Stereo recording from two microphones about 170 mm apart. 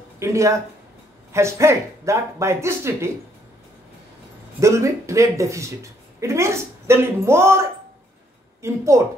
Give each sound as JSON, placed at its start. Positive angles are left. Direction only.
{"t": 0.2, "sound": "speech", "side_deg": -15}
{"t": 4.6, "sound": "speech", "side_deg": -15}
{"t": 8.6, "sound": "speech", "side_deg": -15}